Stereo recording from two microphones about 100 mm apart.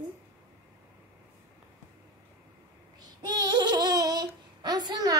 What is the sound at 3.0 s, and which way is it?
Child singing, 45° right (ahead or behind).